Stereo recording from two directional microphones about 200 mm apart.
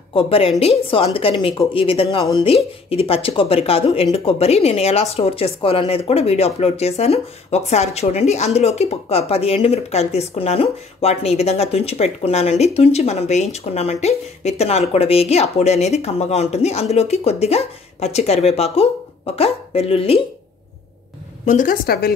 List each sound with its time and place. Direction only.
0.1 s a woman's voice: 25° left (ahead or behind)
21.5 s a woman's voice: 40° left (ahead or behind)